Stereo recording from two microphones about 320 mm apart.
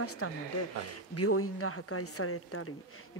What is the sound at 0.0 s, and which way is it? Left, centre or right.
Speech, left.